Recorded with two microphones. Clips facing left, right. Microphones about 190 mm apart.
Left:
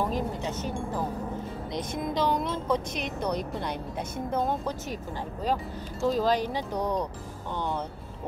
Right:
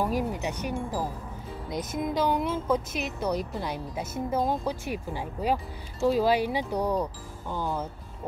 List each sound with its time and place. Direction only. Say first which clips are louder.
0.0 s speech: right 1 dB; 10° right (ahead or behind)